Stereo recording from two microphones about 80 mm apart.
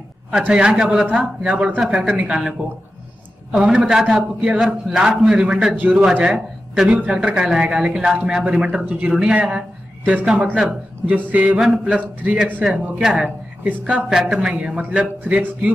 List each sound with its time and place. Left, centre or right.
0.3 s a man's voice: centre
3.5 s a man's voice: centre
11.5 s a man's voice: centre
12.0 s a man's voice: right